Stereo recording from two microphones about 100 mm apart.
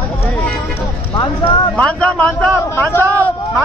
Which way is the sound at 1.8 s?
10° left (ahead or behind).